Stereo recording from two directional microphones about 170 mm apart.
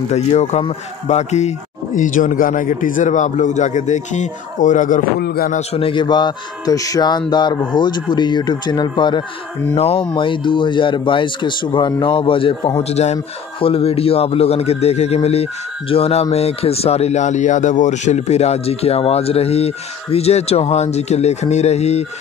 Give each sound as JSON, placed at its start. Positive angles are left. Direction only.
{"t": 0.1, "sound": "a man's voice", "side_deg": 40}
{"t": 5.2, "sound": "a man's voice", "side_deg": 65}
{"t": 5.6, "sound": "speech", "side_deg": 35}